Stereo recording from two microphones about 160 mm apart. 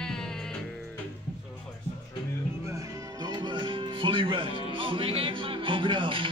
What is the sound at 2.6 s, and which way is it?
Music, 20° right (ahead or behind).